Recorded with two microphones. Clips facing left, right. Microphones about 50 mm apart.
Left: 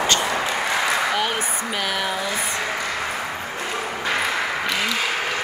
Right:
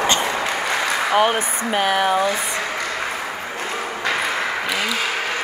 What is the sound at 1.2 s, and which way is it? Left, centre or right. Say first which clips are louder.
Speech: right 5 dB; right.